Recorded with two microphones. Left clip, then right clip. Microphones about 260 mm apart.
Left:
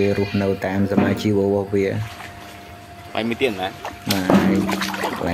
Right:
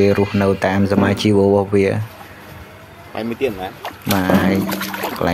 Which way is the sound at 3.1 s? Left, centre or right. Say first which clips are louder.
Even; centre.